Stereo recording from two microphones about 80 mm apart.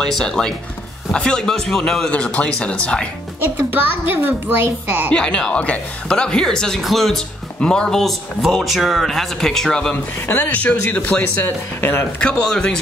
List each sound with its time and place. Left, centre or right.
0.0 s a woman's voice: centre
3.5 s a child's voice: right
5.1 s a woman's voice: centre
10.2 s speech: left
11.4 s speech: left
12.2 s a woman's voice: centre